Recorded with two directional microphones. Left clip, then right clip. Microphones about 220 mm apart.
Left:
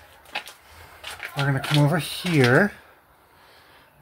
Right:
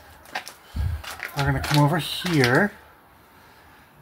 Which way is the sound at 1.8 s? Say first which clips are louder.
Right 1 dB; 35° left (ahead or behind).